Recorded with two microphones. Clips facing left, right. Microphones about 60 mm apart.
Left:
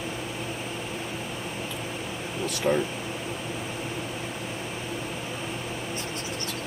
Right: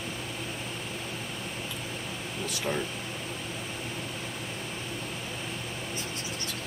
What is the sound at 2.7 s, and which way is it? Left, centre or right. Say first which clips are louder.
Speech: left 8 dB; left.